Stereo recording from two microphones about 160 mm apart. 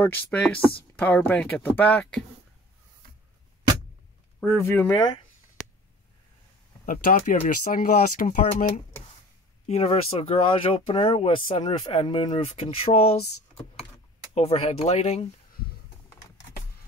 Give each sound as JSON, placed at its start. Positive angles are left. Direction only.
{"t": 0.0, "sound": "speech", "side_deg": 10}
{"t": 4.4, "sound": "speech", "side_deg": 10}
{"t": 4.9, "sound": "speech", "side_deg": 30}
{"t": 6.9, "sound": "speech", "side_deg": 60}
{"t": 14.3, "sound": "speech", "side_deg": 35}